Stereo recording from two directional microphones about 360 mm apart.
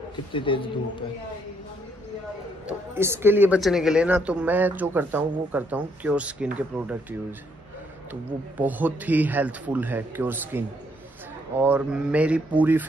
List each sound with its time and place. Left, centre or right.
0.3 s a man's voice: centre
2.6 s a woman's voice: centre